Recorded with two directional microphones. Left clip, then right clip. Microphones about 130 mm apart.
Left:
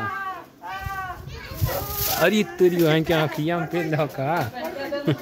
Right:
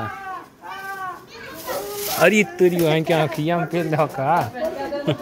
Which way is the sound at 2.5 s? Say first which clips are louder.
Right 1 dB; 25° left (ahead or behind).